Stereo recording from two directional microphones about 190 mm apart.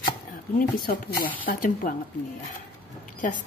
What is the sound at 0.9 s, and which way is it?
A woman's voice, 50° left (ahead or behind).